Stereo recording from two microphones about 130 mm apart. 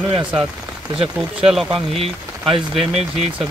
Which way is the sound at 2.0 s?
50° right (ahead or behind).